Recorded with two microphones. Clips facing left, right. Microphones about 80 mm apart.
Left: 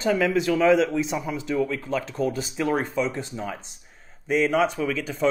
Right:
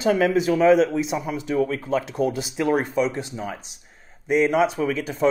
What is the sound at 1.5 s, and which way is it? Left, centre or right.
Speech, right.